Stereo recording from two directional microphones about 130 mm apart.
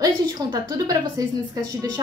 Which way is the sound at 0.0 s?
30° right (ahead or behind).